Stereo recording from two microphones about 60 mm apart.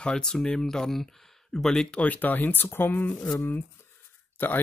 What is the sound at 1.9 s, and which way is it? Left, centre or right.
Speech, left.